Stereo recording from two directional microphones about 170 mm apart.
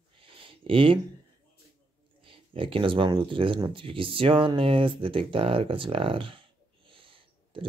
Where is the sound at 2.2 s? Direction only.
30° right (ahead or behind).